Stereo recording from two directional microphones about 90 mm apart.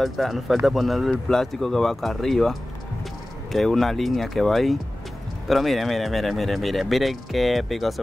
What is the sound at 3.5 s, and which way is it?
Speech, centre (ahead or behind).